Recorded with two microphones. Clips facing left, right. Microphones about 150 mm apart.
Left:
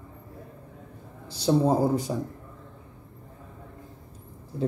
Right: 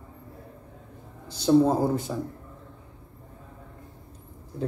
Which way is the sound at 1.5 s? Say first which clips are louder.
Right 4 dB; 10° left (ahead or behind).